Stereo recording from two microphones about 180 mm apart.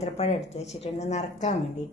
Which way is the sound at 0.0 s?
35° left (ahead or behind).